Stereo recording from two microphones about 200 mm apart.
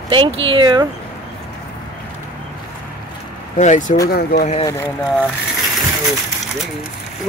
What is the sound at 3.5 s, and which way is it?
Speech, 35° left (ahead or behind).